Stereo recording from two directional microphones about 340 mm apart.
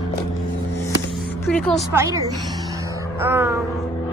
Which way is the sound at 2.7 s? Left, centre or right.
Centre.